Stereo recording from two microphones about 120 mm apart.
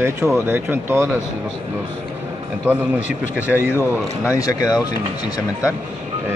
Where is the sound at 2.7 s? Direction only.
15° right (ahead or behind).